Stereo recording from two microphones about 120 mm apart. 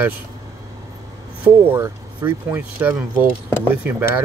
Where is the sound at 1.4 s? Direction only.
15° right (ahead or behind).